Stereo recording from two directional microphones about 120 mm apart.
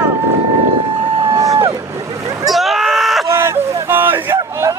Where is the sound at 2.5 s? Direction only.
Centre (ahead or behind).